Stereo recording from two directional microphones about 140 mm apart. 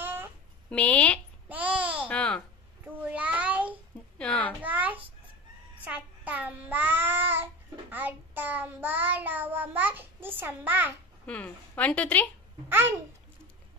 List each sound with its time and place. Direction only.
0.0 s a sound: 15° right (ahead or behind)
0.7 s a woman's voice: 10° left (ahead or behind)
1.5 s babbling: 10° right (ahead or behind)
2.0 s babbling: 10° left (ahead or behind)
3.0 s child singing: 10° right (ahead or behind)
4.2 s a sound: 10° left (ahead or behind)
4.6 s a sound: 10° right (ahead or behind)
5.8 s child singing: 10° right (ahead or behind)
11.2 s a woman's voice: 10° left (ahead or behind)
12.6 s a child's voice: 15° right (ahead or behind)